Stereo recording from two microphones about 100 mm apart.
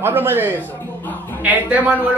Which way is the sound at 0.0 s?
20° right (ahead or behind).